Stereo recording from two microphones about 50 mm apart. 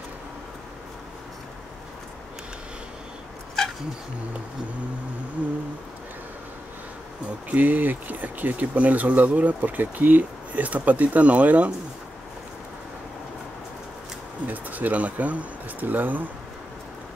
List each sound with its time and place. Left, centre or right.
7.4 s speech: right
14.5 s speech: right